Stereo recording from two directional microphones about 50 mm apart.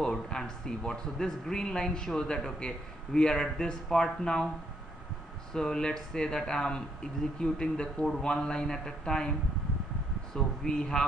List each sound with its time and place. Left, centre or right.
0.0 s speech: centre
5.5 s speech: centre
10.3 s speech: centre